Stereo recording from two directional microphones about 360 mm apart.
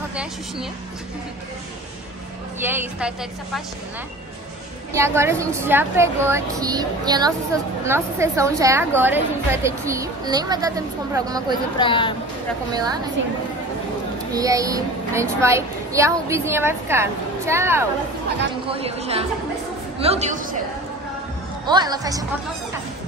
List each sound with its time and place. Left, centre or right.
0.1 s a woman's voice: centre
2.6 s a woman's voice: centre
4.9 s a woman's voice: centre
11.8 s speech: centre
12.7 s a woman's voice: centre
14.3 s a woman's voice: centre
21.6 s a woman's voice: centre